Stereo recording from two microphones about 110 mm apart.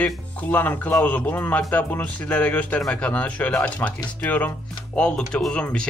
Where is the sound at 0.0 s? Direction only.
15° left (ahead or behind).